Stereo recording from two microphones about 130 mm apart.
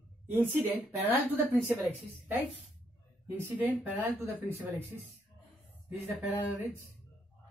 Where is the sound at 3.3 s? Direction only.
15° right (ahead or behind).